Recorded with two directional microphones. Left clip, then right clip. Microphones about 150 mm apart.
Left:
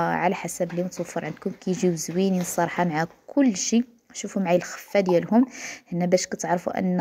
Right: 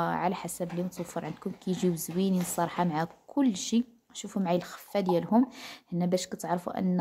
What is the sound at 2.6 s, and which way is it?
Speech, 15° left (ahead or behind).